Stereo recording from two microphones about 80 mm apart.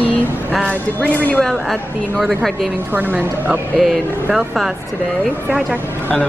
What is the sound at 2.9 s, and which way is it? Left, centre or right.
Speech, centre.